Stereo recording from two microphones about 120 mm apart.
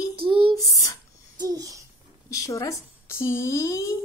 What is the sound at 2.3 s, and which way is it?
Speech, 30° left (ahead or behind).